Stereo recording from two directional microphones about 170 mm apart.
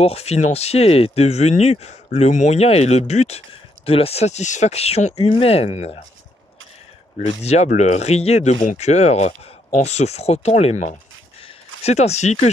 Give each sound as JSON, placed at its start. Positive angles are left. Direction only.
{"t": 0.0, "sound": "speech", "side_deg": 35}
{"t": 7.2, "sound": "speech", "side_deg": 40}
{"t": 11.4, "sound": "a sound", "side_deg": 40}